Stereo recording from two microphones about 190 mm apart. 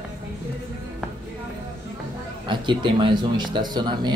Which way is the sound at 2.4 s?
25° right (ahead or behind).